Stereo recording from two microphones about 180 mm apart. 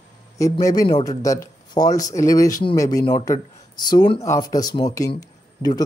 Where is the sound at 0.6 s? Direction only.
20° left (ahead or behind).